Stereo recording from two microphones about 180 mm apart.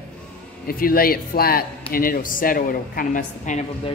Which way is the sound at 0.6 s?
55° left (ahead or behind).